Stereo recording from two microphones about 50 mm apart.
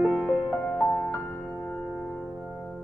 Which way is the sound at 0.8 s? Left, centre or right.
Centre.